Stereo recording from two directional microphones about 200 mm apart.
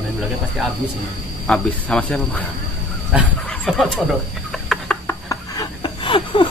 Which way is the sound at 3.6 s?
Centre (ahead or behind).